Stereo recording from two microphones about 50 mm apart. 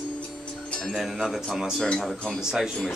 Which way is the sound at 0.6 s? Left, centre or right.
Centre.